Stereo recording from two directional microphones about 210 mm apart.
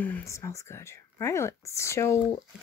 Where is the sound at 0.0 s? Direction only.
10° left (ahead or behind).